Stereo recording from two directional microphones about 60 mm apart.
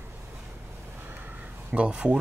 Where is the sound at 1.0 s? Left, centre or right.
Right.